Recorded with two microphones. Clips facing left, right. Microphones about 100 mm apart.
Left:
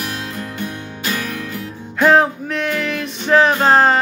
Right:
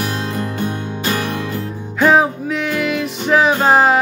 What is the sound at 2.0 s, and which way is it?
Music, 5° right (ahead or behind).